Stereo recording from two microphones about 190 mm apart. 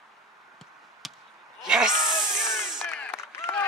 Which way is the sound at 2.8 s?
10° left (ahead or behind).